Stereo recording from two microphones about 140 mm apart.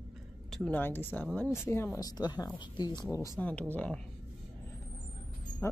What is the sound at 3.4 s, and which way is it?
Speech, 10° left (ahead or behind).